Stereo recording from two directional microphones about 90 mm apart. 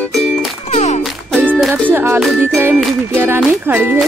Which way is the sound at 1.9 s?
25° right (ahead or behind).